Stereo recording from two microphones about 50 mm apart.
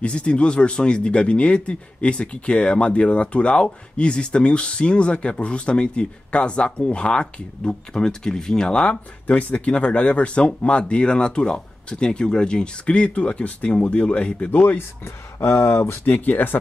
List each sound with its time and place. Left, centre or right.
0.0 s speech: left
15.4 s speech: left
16.1 s speech: left